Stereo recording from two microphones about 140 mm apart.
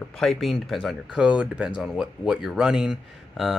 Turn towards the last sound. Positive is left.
turn(degrees=-5)  # may be behind; listen again after turning